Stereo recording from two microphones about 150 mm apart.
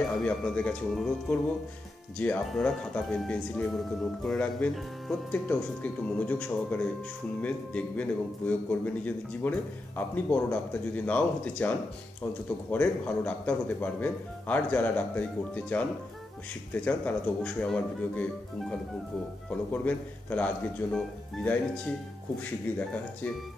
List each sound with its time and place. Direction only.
0.2 s a man's voice: 5° left (ahead or behind)
2.1 s a man's voice: 10° left (ahead or behind)
12.7 s a man's voice: 10° left (ahead or behind)